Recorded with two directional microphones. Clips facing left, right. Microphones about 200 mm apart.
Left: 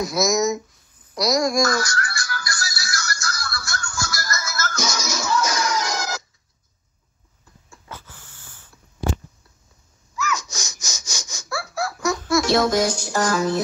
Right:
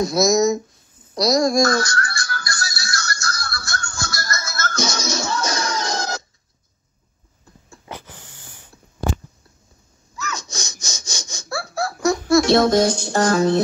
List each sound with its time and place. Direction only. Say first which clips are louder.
0.0 s speech: right 4 dB; 30° right (ahead or behind)
1.1 s music: right 3 dB; 30° right (ahead or behind)
7.7 s a sound: right 5 dB; 20° right (ahead or behind)
10.1 s laughter: left 3 dB; 30° right (ahead or behind)
12.4 s speech: right 2 dB; 60° right (ahead or behind)